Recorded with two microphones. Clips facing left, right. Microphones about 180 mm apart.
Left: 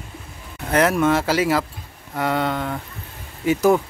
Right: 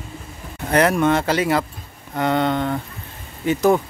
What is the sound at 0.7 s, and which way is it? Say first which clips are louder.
Speech: right 1 dB; 5° left (ahead or behind).